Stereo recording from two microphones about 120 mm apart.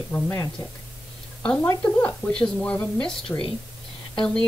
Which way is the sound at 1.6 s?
15° left (ahead or behind).